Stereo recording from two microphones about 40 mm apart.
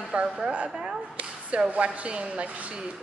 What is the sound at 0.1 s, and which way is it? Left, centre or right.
A woman's voice, right.